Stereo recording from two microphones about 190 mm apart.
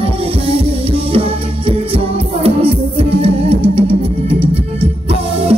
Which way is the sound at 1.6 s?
30° right (ahead or behind).